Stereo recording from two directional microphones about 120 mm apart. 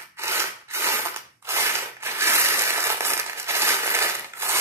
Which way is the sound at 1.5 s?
20° right (ahead or behind).